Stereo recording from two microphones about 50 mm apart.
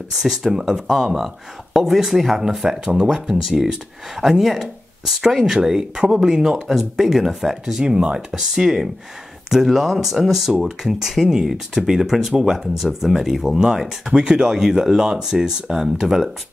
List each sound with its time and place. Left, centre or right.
0.2 s speech: centre